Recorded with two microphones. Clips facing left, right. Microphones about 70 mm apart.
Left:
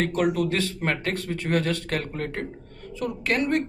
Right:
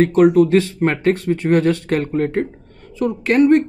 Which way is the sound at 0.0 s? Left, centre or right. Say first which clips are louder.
Right 11 dB; right.